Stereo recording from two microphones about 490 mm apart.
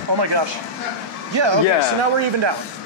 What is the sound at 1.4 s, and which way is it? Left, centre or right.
Speech, right.